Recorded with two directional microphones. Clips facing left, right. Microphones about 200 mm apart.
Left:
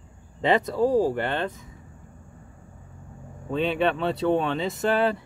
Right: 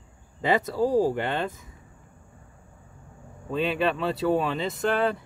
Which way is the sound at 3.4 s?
Centre (ahead or behind).